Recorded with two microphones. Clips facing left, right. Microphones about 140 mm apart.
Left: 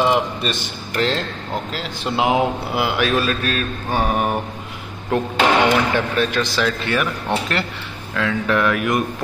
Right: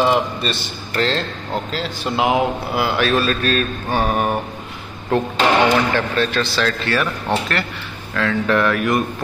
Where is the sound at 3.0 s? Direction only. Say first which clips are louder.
Right 1 dB; 10° left (ahead or behind).